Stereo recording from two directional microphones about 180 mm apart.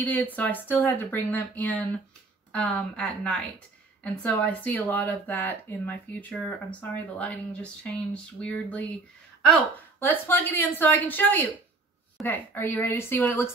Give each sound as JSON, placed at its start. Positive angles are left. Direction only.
{"t": 0.0, "sound": "speech", "side_deg": 10}
{"t": 9.9, "sound": "speech", "side_deg": 10}